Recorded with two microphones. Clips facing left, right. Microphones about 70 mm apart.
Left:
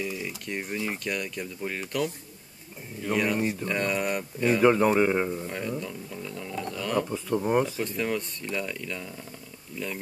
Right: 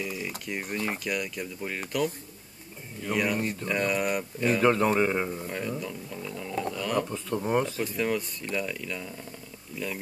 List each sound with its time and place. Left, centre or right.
0.0 s mechanisms: centre
0.5 s speech: centre